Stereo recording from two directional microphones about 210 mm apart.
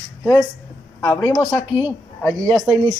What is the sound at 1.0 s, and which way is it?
Speech, 20° left (ahead or behind).